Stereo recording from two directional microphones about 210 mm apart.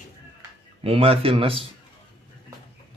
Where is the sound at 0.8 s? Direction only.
25° right (ahead or behind).